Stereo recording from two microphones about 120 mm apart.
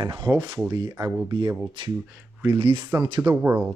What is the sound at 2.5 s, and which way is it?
Speech, 50° right (ahead or behind).